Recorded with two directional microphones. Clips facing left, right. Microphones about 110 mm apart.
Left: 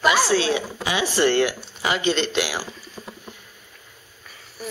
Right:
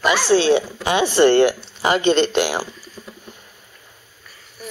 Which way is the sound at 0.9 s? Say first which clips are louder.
Right 6 dB; 60° right (ahead or behind).